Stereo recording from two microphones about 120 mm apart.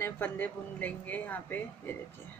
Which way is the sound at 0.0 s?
15° left (ahead or behind).